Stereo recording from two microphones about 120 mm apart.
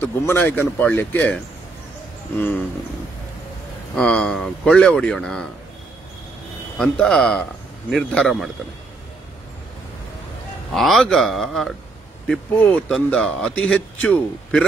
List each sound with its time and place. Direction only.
0.0 s a man's voice: 20° left (ahead or behind)
3.9 s speech: 10° left (ahead or behind)
6.8 s speech: 5° left (ahead or behind)
10.7 s a man's voice: centre (ahead or behind)